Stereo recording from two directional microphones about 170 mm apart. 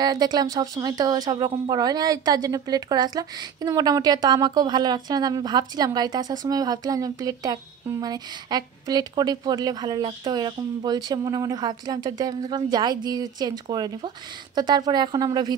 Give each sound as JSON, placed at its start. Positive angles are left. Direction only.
{"t": 0.0, "sound": "speech", "side_deg": -25}